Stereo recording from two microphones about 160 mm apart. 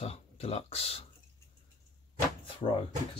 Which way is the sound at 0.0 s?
40° left (ahead or behind).